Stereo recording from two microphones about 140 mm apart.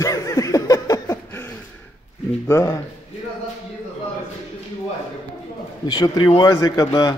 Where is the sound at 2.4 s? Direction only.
20° left (ahead or behind).